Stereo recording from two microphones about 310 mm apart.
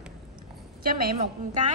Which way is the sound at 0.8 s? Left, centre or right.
Right.